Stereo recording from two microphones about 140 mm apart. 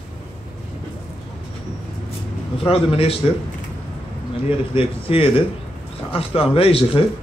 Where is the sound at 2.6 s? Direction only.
40° left (ahead or behind).